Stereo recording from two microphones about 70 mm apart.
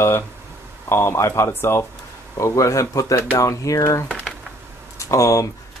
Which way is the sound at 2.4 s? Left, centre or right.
Left.